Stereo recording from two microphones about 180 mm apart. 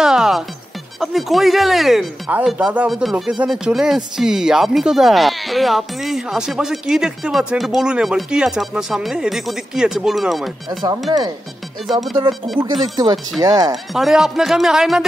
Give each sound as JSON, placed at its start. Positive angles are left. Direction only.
{"t": 0.0, "sound": "music", "side_deg": -5}
{"t": 1.0, "sound": "speech", "side_deg": 0}
{"t": 10.8, "sound": "speech", "side_deg": -20}
{"t": 11.9, "sound": "speech", "side_deg": 0}
{"t": 13.4, "sound": "speech", "side_deg": -20}
{"t": 13.9, "sound": "speech", "side_deg": 0}